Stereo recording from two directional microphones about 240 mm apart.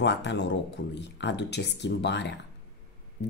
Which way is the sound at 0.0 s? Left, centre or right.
Left.